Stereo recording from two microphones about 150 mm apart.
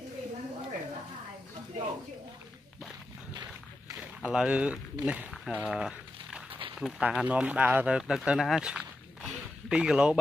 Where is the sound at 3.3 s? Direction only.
25° right (ahead or behind).